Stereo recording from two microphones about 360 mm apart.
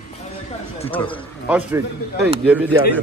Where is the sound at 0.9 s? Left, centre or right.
Centre.